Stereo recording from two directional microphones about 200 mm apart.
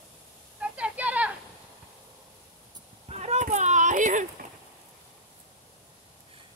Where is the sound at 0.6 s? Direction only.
5° right (ahead or behind).